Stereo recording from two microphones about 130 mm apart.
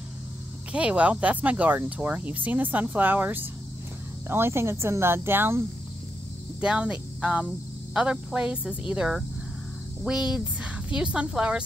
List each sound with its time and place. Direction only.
0.7 s speech: 10° right (ahead or behind)
6.6 s speech: 10° right (ahead or behind)